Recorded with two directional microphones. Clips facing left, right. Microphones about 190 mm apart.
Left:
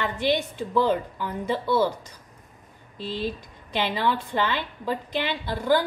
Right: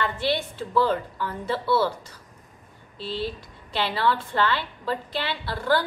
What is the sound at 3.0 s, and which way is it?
A woman's voice, 15° left (ahead or behind).